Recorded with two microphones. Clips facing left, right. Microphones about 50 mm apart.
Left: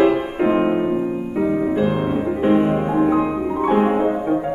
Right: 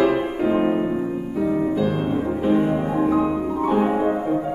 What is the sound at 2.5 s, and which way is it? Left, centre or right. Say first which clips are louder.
Music: left 3 dB; left.